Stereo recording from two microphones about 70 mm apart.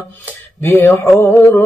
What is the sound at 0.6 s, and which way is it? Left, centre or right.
Mantra, left.